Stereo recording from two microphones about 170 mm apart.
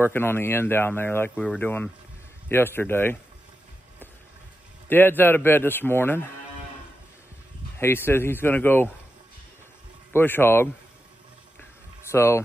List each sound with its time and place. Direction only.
0.0 s speech: 15° left (ahead or behind)
4.8 s speech: 10° left (ahead or behind)
7.8 s speech: 15° left (ahead or behind)
10.1 s speech: 10° left (ahead or behind)
12.1 s speech: 15° left (ahead or behind)